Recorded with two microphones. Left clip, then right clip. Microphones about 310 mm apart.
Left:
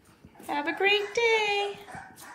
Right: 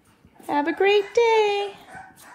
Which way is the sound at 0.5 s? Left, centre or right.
Right.